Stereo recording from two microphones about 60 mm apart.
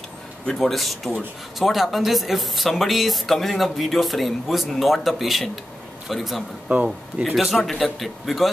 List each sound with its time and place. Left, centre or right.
0.5 s speech: centre
6.7 s speech: right
7.2 s speech: centre